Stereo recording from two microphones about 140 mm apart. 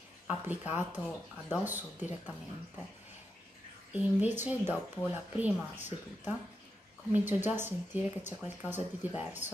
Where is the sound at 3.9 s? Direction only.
10° right (ahead or behind).